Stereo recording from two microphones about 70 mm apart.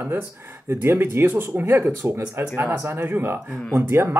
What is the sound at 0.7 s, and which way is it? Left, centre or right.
Speech, right.